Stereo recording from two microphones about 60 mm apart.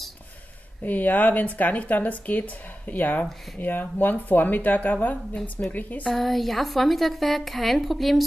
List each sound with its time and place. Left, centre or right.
0.8 s speech: left
6.1 s a woman's voice: centre